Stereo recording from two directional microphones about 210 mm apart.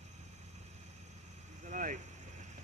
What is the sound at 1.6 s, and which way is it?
Vehicle, 35° right (ahead or behind).